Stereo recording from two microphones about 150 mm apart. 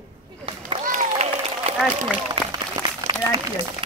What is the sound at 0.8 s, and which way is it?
Applause, 50° right (ahead or behind).